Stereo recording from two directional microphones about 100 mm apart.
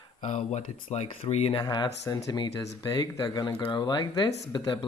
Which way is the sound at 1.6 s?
45° left (ahead or behind).